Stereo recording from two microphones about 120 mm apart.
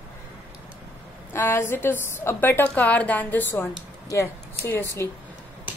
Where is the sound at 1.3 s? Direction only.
20° left (ahead or behind).